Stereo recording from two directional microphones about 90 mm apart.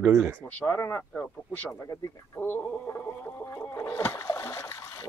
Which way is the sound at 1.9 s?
40° left (ahead or behind).